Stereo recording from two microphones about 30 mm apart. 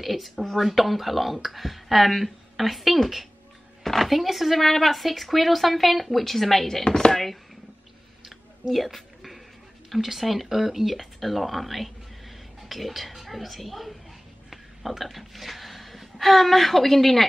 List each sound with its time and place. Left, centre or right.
0.0 s speech: centre
3.8 s a sound: centre
4.1 s speech: centre
6.8 s speech: left
7.1 s speech: centre
8.7 s a sound: centre
9.8 s speech: centre